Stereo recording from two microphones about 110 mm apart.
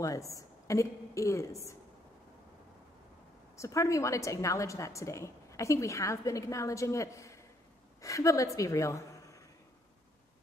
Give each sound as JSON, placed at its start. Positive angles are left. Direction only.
{"t": 0.0, "sound": "a woman's voice", "side_deg": 30}
{"t": 3.5, "sound": "a woman's voice", "side_deg": 30}